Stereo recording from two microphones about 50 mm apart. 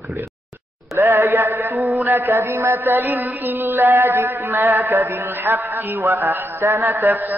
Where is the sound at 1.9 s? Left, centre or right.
Right.